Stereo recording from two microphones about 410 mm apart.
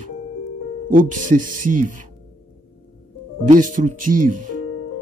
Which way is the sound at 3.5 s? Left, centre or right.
Centre.